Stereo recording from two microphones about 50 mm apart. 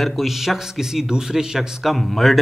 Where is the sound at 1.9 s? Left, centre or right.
Centre.